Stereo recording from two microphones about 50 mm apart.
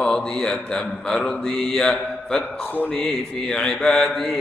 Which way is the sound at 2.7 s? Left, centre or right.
Left.